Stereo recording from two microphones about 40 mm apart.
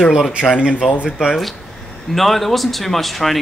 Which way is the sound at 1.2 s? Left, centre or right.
Centre.